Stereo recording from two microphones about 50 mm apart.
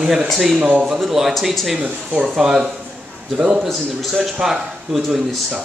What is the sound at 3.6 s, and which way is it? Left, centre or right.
Speech, centre.